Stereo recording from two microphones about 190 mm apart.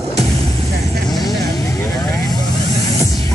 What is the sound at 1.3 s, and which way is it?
Vehicle, 20° left (ahead or behind).